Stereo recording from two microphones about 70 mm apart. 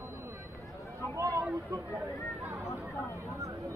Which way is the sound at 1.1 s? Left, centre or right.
Right.